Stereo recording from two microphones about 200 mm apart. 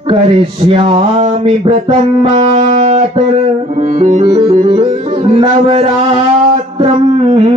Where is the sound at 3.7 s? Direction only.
35° right (ahead or behind).